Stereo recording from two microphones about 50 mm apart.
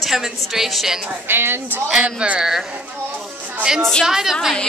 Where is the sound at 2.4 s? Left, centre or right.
Centre.